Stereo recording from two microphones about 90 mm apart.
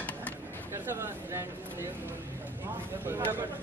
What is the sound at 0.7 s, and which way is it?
Speech, 30° right (ahead or behind).